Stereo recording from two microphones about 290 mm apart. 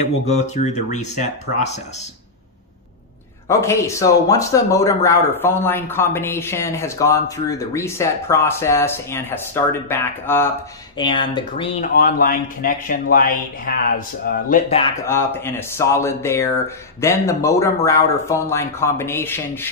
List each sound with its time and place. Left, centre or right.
0.3 s speech: left
3.4 s a man's voice: centre
11.9 s speech: left
14.7 s a man's voice: centre